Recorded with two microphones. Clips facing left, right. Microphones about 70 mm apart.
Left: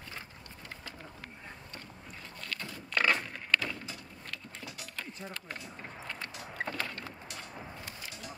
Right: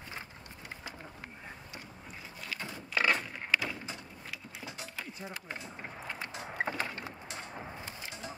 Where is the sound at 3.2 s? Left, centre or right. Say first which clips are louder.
Left 1 dB; centre.